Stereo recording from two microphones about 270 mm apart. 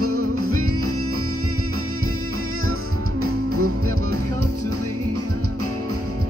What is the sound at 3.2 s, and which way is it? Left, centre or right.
Music, right.